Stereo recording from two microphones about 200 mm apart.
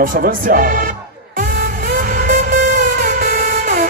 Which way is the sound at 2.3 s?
40° right (ahead or behind).